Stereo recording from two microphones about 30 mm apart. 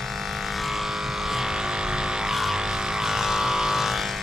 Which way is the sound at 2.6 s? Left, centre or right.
Right.